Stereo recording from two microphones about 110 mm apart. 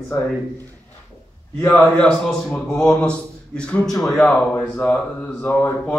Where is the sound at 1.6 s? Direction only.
15° left (ahead or behind).